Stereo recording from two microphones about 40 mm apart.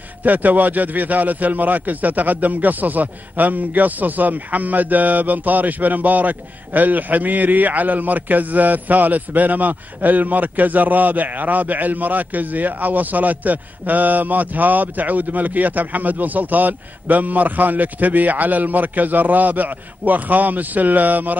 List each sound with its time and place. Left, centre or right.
0.2 s a man's voice: right